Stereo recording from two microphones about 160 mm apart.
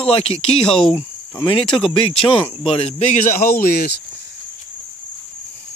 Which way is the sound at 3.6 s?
75° left (ahead or behind).